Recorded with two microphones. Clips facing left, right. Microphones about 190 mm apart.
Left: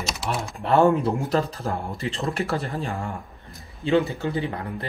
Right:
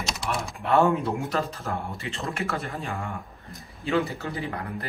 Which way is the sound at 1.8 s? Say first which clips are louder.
Left 5 dB; 35° left (ahead or behind).